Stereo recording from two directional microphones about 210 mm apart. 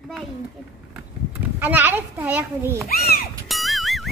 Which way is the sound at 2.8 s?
45° left (ahead or behind).